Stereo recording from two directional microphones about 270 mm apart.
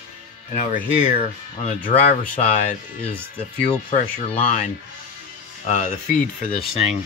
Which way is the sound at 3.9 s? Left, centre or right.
Left.